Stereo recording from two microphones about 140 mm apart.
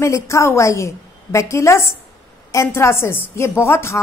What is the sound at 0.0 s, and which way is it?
A woman's voice, 20° left (ahead or behind).